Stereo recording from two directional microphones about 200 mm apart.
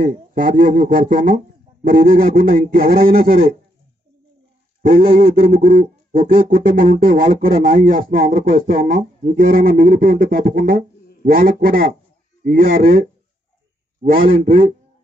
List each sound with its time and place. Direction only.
0.0 s speech: 45° right (ahead or behind)
4.8 s speech: 45° right (ahead or behind)
14.0 s speech: 45° right (ahead or behind)